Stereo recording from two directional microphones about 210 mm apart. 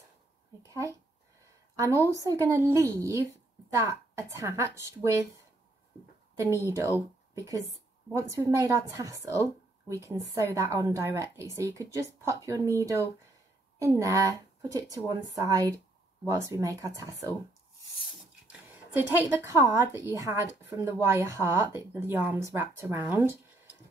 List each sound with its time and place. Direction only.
1.8 s a woman's voice: 15° right (ahead or behind)
6.3 s a woman's voice: 15° right (ahead or behind)
18.7 s a woman's voice: 10° right (ahead or behind)